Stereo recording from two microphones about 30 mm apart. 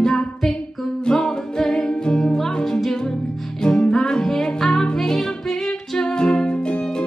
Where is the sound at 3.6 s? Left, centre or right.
Left.